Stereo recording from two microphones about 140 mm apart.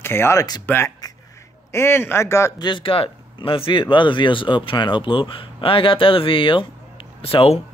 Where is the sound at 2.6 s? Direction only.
40° left (ahead or behind).